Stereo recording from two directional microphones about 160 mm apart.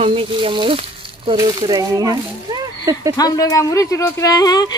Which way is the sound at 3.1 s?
25° left (ahead or behind).